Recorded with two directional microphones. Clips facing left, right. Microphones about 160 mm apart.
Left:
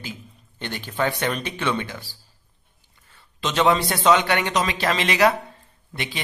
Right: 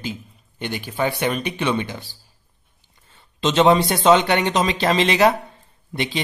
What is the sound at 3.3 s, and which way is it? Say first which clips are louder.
Speech: right 4 dB; 25° right (ahead or behind).